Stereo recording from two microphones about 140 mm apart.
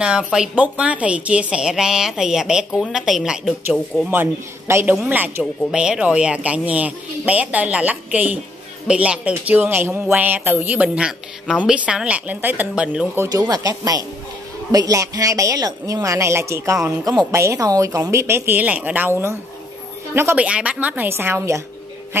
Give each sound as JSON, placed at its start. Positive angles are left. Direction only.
{"t": 0.3, "sound": "a woman's voice", "side_deg": -5}
{"t": 4.1, "sound": "speech", "side_deg": -15}
{"t": 13.2, "sound": "speech", "side_deg": -25}